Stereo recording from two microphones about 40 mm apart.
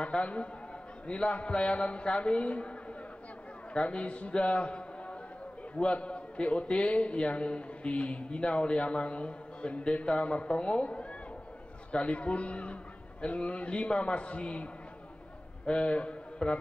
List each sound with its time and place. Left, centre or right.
0.0 s a man's voice: left